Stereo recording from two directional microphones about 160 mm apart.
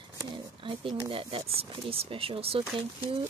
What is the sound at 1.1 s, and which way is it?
Speech, 35° right (ahead or behind).